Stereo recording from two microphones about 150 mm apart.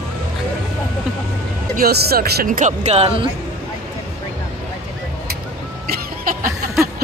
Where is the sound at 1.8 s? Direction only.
85° right; by 3.3 s 45° right (ahead or behind).